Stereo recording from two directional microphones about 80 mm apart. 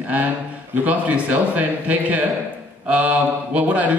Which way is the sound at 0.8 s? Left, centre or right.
Centre.